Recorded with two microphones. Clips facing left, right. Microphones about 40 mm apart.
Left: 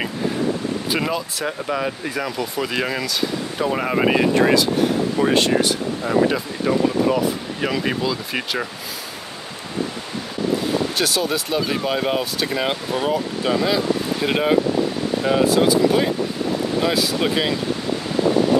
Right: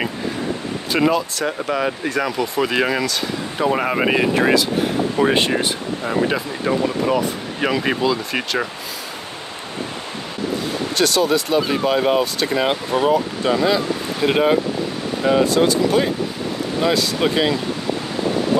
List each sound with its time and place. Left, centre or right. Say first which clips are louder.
0.9 s speech: right 10 dB; centre
5.1 s speech: right 2 dB; right
6.0 s speech: left 1 dB; centre
11.0 s speech: right 4 dB; centre
15.4 s speech: left 1 dB; centre